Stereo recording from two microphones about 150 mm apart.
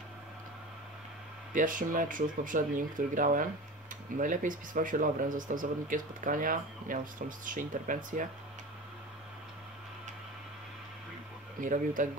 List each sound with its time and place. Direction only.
1.5 s speech: 60° right (ahead or behind)
11.6 s speech: 60° right (ahead or behind)